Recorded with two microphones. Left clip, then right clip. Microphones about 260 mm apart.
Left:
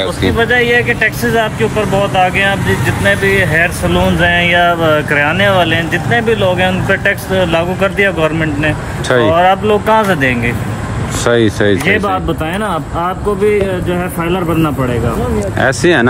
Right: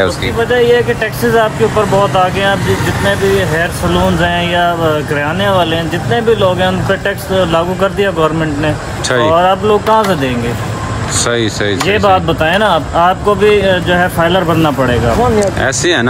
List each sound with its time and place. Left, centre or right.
0.4 s speech: centre
3.9 s speech: centre
11.2 s speech: centre
12.5 s speech: right
13.5 s speech: centre
14.3 s speech: right
15.6 s speech: centre